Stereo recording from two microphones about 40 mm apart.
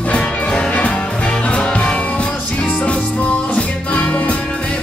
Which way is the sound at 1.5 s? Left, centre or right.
Left.